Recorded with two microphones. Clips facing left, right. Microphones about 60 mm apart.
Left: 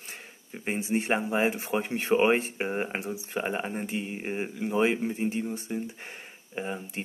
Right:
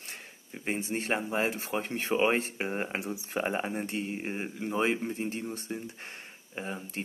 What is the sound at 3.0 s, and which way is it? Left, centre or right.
Speech, centre.